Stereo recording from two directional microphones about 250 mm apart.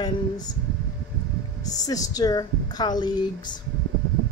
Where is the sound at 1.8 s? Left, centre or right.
Centre.